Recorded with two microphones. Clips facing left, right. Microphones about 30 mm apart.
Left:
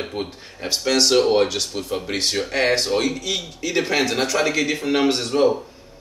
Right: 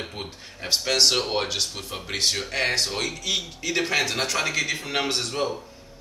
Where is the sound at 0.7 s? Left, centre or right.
Centre.